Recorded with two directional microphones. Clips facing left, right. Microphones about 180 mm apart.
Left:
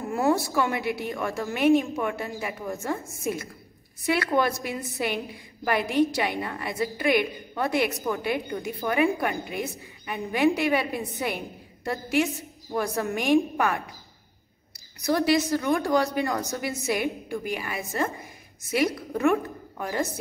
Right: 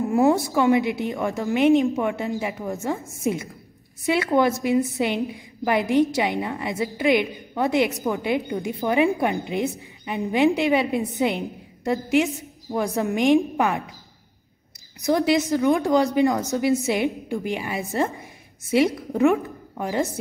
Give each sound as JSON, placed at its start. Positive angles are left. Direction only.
{"t": 0.1, "sound": "a woman's voice", "side_deg": -15}
{"t": 15.0, "sound": "a woman's voice", "side_deg": -20}
{"t": 19.1, "sound": "a woman's voice", "side_deg": -15}